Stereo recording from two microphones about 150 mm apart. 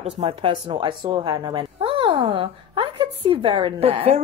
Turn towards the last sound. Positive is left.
turn(degrees=-40)  # may be behind; listen again after turning